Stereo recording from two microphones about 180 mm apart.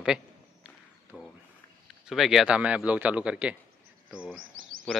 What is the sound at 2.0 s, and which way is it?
A man's voice, centre (ahead or behind).